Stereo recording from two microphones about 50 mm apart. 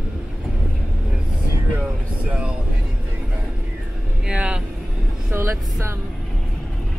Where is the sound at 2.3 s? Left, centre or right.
Right.